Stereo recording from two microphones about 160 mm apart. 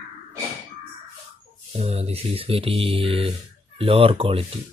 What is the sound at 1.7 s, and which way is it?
Speech, 40° right (ahead or behind).